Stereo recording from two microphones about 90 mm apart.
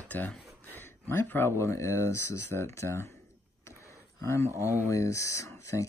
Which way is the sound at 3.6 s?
30° left (ahead or behind).